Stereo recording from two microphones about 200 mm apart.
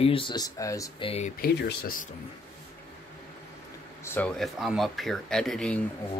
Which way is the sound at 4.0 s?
10° left (ahead or behind).